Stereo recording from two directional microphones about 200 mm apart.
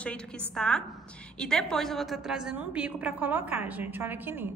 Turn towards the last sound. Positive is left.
turn(degrees=-10)  # may be behind; listen again after turning